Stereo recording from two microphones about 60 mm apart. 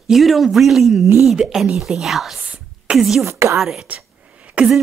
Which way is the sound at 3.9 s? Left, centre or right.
Right.